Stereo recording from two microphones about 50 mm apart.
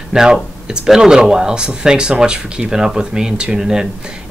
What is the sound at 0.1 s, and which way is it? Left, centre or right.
Speech, centre.